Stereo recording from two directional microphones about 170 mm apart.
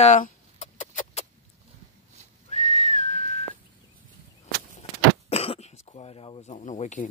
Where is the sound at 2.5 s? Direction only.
45° left (ahead or behind).